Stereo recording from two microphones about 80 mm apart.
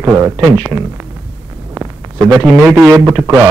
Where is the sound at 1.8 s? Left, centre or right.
Right.